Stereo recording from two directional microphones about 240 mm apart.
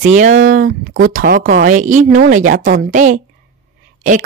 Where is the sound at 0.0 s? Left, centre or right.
Right.